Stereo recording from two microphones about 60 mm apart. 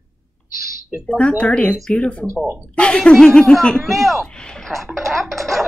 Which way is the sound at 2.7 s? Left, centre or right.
Centre.